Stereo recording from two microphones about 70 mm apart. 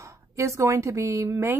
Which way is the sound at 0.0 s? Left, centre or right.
Right.